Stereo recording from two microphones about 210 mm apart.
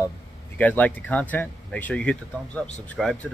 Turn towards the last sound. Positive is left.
turn(degrees=5)  # may be behind; listen again after turning